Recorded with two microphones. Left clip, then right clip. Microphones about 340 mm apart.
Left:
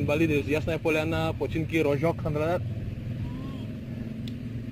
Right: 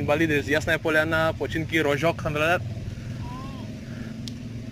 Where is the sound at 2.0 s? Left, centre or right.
Right.